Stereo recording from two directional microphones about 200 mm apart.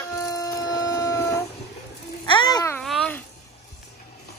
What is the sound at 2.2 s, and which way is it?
Babbling, 20° left (ahead or behind).